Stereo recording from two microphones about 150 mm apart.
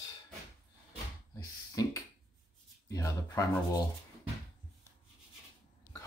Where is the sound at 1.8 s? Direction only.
25° left (ahead or behind).